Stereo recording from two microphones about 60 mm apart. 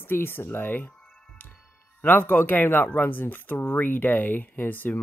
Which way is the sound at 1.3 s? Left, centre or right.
Left.